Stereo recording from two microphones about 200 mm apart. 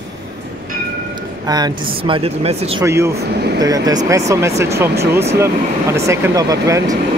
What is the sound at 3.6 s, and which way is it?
Speech, 20° right (ahead or behind).